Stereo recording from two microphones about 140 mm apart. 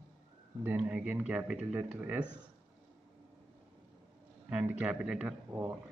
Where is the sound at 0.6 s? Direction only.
10° right (ahead or behind).